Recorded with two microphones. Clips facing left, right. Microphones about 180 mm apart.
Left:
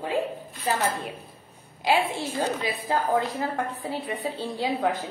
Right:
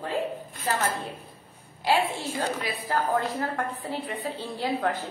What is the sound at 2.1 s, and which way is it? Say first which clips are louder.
A woman's voice: left 2 dB; 15° left (ahead or behind).